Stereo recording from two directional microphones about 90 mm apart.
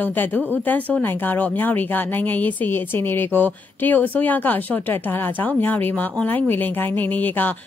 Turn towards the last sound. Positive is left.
turn(degrees=20)  # may be behind; listen again after turning